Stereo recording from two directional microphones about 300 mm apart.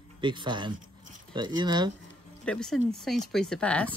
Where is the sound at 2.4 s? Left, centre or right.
Centre.